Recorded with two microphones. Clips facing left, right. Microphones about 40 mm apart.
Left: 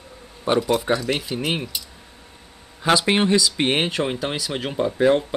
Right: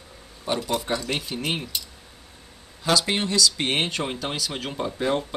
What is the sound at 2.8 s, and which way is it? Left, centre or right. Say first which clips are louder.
Speech: left 5 dB; left.